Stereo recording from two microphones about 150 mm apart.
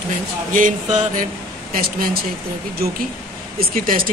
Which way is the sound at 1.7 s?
75° right (ahead or behind).